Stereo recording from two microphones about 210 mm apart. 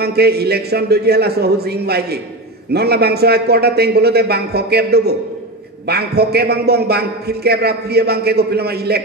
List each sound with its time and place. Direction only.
0.0 s a man's voice: 50° right (ahead or behind)